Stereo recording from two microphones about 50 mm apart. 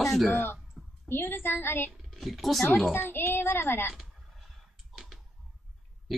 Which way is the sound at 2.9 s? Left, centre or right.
Left.